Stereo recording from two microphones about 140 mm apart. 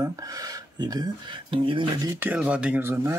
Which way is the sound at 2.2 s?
10° right (ahead or behind).